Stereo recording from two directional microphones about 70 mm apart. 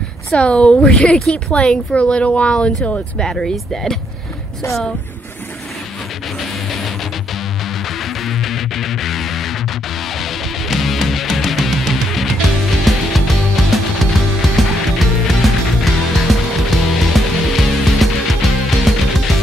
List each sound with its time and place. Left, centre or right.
0.3 s speech: centre
8.0 s music: centre
15.0 s music: centre